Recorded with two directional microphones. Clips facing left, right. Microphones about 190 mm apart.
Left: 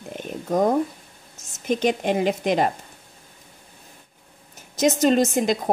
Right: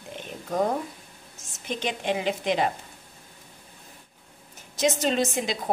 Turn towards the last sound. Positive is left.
turn(degrees=45)  # may be behind; listen again after turning